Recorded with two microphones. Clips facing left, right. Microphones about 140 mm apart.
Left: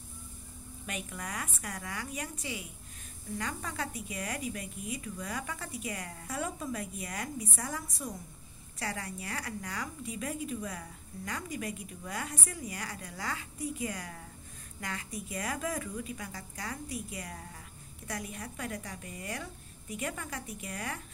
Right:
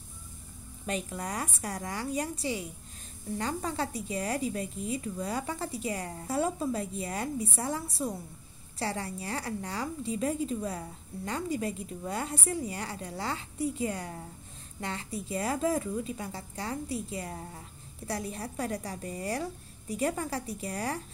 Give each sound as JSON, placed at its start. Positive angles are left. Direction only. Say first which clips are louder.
{"t": 0.8, "sound": "a woman's voice", "louder": "right 6 dB", "side_deg": -30}